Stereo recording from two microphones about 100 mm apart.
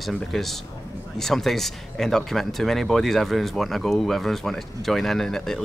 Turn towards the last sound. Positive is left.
turn(degrees=5)  # may be behind; listen again after turning